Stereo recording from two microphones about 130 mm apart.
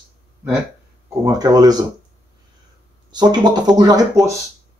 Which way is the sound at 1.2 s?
30° right (ahead or behind).